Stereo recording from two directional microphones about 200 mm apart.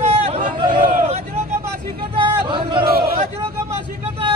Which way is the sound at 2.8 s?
50° right (ahead or behind).